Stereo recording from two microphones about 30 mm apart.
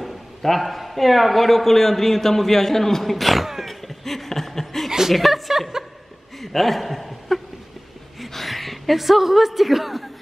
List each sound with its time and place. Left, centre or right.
0.0 s a man's voice: centre
3.6 s a sound: centre
5.1 s a woman's voice: centre